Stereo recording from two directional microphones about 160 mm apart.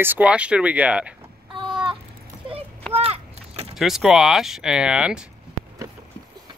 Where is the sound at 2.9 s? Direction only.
40° right (ahead or behind).